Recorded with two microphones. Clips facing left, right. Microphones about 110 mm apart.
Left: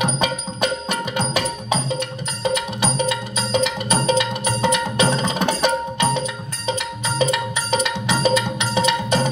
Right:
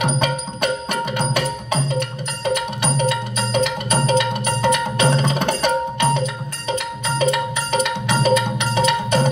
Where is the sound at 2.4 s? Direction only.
55° right (ahead or behind).